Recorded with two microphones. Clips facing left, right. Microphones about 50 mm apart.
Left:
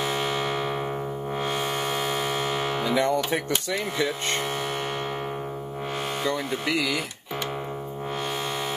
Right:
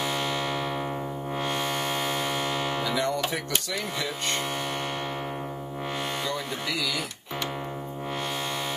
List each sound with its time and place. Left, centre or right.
0.1 s music: left
2.8 s speech: left
6.2 s speech: left